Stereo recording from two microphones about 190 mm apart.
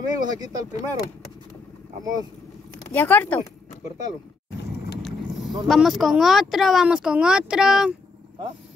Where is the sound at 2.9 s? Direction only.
10° left (ahead or behind).